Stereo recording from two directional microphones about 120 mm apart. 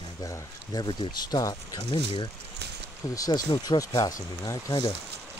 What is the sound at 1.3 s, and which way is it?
Speech, 35° left (ahead or behind).